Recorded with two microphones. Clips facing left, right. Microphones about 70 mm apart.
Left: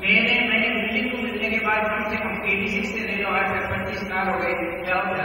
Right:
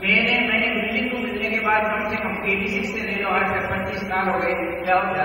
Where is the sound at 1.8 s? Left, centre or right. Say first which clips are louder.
Right 1 dB; centre.